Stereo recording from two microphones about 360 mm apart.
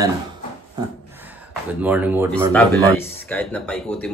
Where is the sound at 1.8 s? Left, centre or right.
Centre.